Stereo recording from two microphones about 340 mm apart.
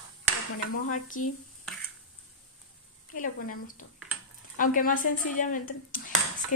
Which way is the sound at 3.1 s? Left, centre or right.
Left.